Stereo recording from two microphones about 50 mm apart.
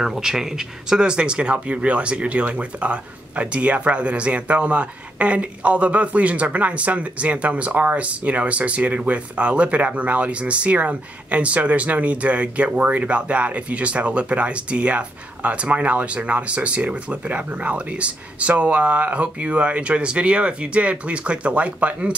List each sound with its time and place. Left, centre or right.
0.0 s speech: centre; by 22.1 s right